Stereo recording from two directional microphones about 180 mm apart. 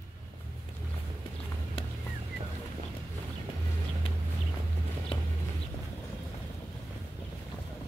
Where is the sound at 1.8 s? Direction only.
30° left (ahead or behind).